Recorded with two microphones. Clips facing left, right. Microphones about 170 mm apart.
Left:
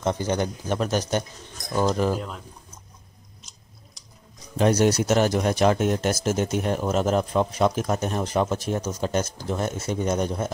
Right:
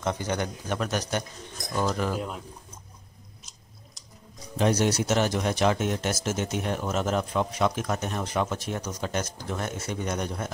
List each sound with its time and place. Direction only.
0.0 s speech: 30° left (ahead or behind)
2.1 s speech: 5° right (ahead or behind)
4.6 s speech: 40° left (ahead or behind); by 10.5 s 25° left (ahead or behind)